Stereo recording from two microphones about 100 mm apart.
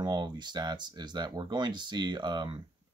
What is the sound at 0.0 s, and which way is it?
Speech, 45° right (ahead or behind).